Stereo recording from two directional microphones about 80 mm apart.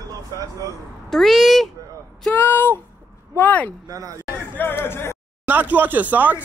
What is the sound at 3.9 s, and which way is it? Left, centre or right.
Speech, right.